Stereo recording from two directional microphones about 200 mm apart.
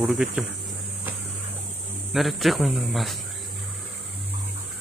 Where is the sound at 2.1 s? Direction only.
Centre (ahead or behind).